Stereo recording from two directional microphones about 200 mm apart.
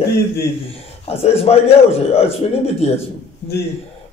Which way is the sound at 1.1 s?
30° left (ahead or behind).